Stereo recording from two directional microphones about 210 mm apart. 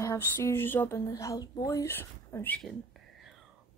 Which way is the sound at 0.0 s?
15° left (ahead or behind).